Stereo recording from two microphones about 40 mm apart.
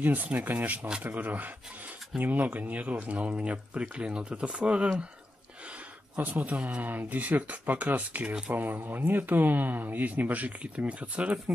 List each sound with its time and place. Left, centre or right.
0.0 s speech: right
6.1 s speech: right
6.8 s speech: right
7.2 s speech: right
8.5 s speech: right